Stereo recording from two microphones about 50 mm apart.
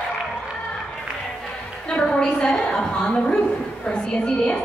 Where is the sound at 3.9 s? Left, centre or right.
Centre.